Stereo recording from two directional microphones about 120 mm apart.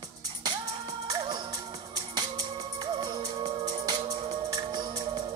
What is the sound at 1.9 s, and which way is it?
Music, 35° right (ahead or behind).